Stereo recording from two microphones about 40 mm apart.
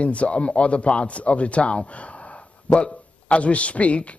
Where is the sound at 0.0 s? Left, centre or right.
Left.